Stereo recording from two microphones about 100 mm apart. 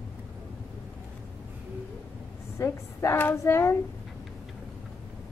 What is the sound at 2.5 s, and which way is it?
A woman's voice, 25° left (ahead or behind).